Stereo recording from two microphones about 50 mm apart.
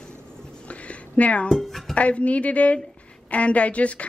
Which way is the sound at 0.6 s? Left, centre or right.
Left.